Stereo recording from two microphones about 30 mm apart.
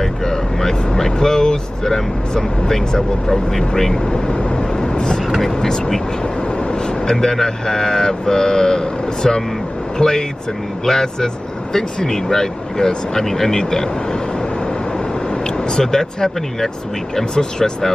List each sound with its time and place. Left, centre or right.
0.0 s speech: centre
4.1 s speech: left
15.4 s speech: left